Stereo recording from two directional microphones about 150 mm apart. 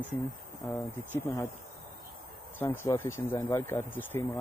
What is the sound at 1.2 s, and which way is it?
Speech, 20° left (ahead or behind).